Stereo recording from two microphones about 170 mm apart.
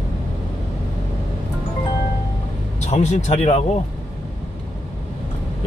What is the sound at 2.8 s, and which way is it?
Speech, 40° left (ahead or behind).